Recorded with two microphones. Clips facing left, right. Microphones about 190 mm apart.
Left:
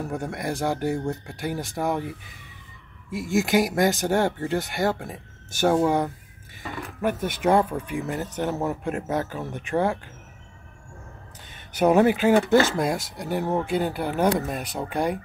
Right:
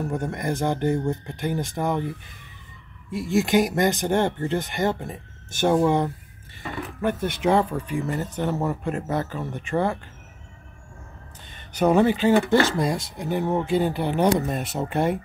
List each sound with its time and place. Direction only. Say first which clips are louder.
0.1 s speech: right 2 dB; 5° left (ahead or behind)
3.3 s speech: right 1 dB; 5° left (ahead or behind)
11.8 s speech: even; 10° left (ahead or behind)